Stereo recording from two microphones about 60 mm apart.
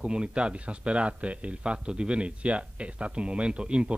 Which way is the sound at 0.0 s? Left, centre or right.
Centre.